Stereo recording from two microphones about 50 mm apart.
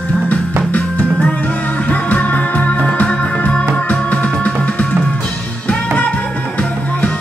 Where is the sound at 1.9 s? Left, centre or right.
Left.